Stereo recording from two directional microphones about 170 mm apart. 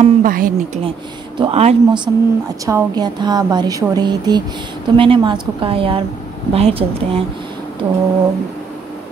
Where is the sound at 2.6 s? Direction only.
20° right (ahead or behind).